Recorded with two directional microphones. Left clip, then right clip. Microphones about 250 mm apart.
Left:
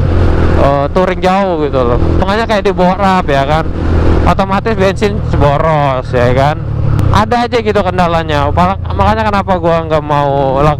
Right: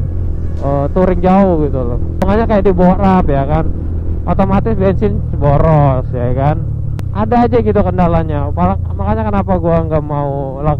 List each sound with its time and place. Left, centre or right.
1.0 s speech: centre
10.3 s speech: left